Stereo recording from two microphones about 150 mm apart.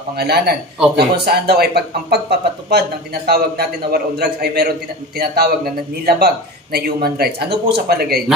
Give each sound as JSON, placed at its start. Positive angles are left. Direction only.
{"t": 0.2, "sound": "a man's voice", "side_deg": -90}